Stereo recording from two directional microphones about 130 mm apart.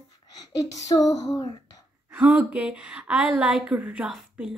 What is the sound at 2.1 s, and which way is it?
Speech, 10° right (ahead or behind).